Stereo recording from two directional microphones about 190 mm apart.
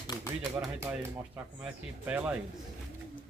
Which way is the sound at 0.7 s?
15° right (ahead or behind).